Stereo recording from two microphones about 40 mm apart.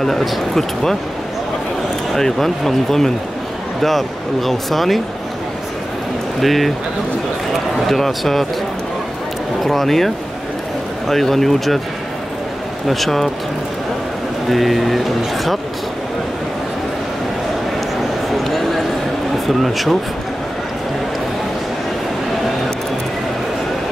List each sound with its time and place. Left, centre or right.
0.0 s speech: centre
2.1 s speech: centre
6.4 s speech: centre
7.9 s speech: centre
9.6 s speech: centre
12.8 s speech: centre
14.5 s speech: centre
19.4 s speech: centre